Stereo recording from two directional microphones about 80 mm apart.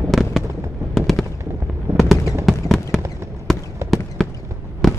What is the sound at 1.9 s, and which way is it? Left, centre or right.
Fireworks, right.